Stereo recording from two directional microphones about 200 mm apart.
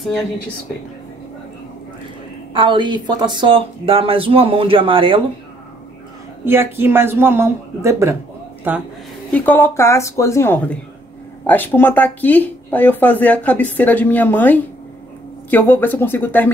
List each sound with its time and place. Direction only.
2.5 s speech: 25° right (ahead or behind)
6.4 s speech: 10° right (ahead or behind)
9.3 s speech: 10° left (ahead or behind)